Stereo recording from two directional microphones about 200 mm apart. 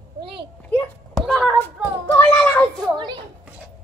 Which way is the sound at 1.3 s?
Centre (ahead or behind).